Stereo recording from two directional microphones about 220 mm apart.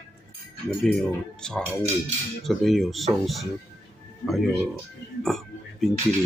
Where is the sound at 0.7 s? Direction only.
5° left (ahead or behind).